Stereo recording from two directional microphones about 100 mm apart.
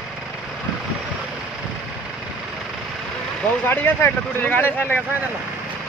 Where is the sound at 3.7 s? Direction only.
20° left (ahead or behind).